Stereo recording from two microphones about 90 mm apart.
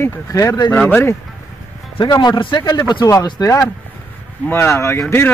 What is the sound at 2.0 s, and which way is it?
Speech, 50° left (ahead or behind).